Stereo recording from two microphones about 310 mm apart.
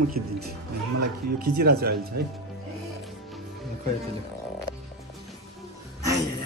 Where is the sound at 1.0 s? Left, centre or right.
Right.